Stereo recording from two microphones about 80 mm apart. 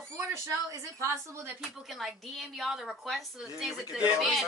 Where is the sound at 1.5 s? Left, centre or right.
Centre.